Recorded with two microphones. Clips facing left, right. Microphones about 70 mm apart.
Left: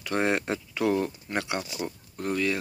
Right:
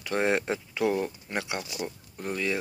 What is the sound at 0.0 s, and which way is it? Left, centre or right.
Speech, centre.